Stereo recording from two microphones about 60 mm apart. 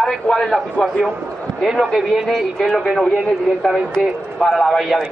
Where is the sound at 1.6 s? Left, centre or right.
Centre.